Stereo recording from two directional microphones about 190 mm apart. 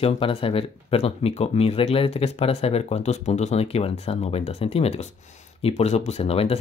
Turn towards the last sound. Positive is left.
turn(degrees=30)  # may be behind; listen again after turning